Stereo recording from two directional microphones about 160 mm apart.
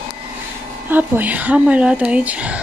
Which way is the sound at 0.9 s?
10° right (ahead or behind).